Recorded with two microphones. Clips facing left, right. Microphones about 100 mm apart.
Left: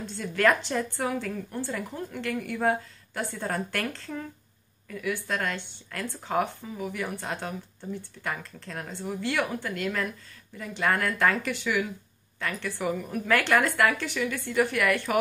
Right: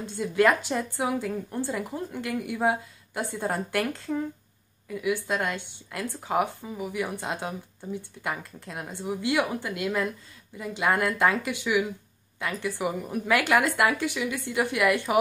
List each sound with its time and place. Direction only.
0.0 s a woman's voice: 15° right (ahead or behind)